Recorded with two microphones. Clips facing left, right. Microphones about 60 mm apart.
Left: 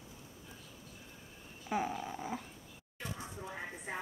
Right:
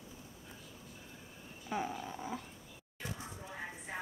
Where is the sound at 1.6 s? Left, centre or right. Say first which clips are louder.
Left 2 dB; centre.